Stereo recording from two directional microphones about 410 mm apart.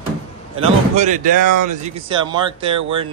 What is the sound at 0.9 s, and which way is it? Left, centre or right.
Speech, centre.